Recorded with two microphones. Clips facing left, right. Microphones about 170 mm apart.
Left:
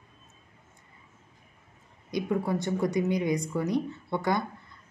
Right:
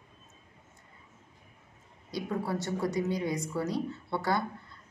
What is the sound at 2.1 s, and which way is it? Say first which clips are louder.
A woman's voice: left 4 dB; 15° left (ahead or behind).